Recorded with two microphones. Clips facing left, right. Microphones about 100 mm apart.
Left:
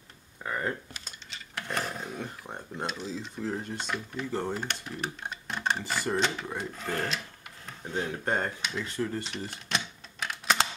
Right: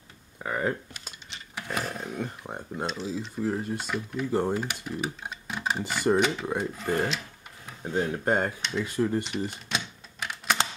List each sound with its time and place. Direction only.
0.4 s a sound: 15° right (ahead or behind)
2.4 s speech: 10° right (ahead or behind)
4.3 s speech: 15° right (ahead or behind)
4.6 s speech: centre (ahead or behind)
9.2 s typewriter: 5° right (ahead or behind)